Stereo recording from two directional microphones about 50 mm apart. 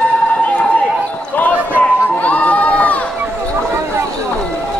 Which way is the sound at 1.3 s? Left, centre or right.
Left.